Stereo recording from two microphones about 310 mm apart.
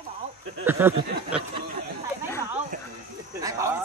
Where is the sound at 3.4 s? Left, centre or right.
Centre.